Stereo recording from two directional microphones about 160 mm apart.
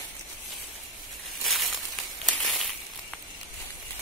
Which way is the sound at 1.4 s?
Centre (ahead or behind).